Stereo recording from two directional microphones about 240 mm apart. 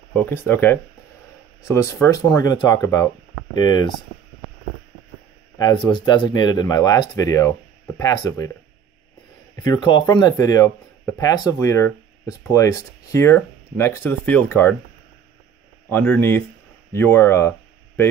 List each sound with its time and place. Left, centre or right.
0.1 s speech: centre
5.6 s speech: centre
9.6 s speech: centre
15.9 s speech: centre